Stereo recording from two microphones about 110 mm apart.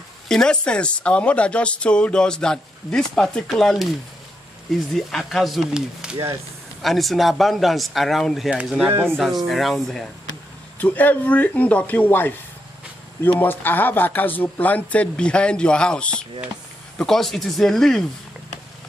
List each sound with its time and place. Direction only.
0.3 s speech: 5° left (ahead or behind)
4.9 s speech: centre (ahead or behind)
8.8 s speech: 20° right (ahead or behind)
9.1 s speech: centre (ahead or behind)
10.8 s speech: 15° left (ahead or behind)